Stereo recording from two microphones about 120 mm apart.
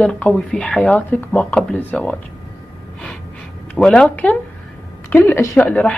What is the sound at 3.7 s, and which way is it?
A woman's voice, 5° left (ahead or behind).